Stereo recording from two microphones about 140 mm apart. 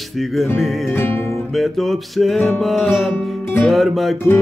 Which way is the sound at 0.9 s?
15° left (ahead or behind).